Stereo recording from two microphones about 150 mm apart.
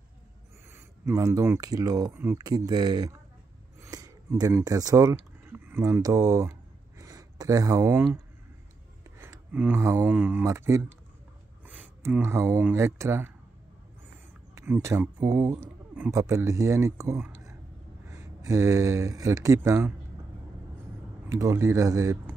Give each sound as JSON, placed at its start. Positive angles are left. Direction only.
{"t": 0.7, "sound": "speech", "side_deg": -20}
{"t": 9.2, "sound": "speech", "side_deg": -15}
{"t": 14.5, "sound": "speech", "side_deg": -20}
{"t": 21.3, "sound": "speech", "side_deg": -20}